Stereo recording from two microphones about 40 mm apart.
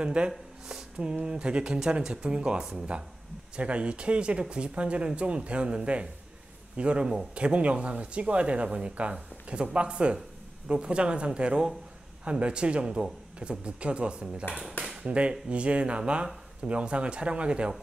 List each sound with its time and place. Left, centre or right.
0.0 s speech: right
0.3 s a sound: centre
1.0 s speech: right
15.0 s speech: right